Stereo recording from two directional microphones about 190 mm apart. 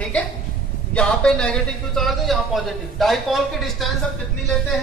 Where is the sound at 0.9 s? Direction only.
5° left (ahead or behind).